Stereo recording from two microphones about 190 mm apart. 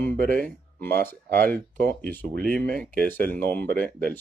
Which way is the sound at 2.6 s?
5° left (ahead or behind).